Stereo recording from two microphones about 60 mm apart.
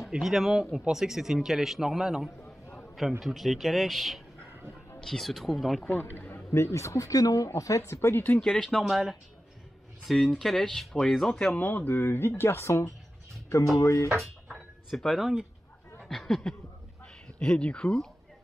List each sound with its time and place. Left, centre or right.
0.1 s a man's voice: centre
5.9 s speech: left
7.4 s speech: left
7.8 s speech: left
8.4 s speech: centre
11.5 s speech: left
14.2 s a sound: centre
16.1 s snicker: centre
17.0 s a sound: centre
17.6 s speech: centre